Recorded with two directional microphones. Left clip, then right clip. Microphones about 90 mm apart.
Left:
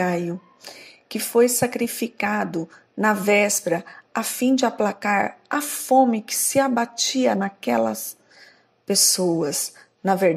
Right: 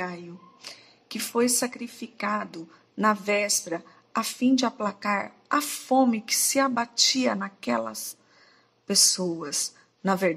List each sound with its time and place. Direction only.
1.0 s speech: 40° left (ahead or behind); by 2.5 s 60° left (ahead or behind)
2.5 s speech: 50° left (ahead or behind)
5.6 s a woman's voice: 35° left (ahead or behind); by 10.1 s 55° left (ahead or behind)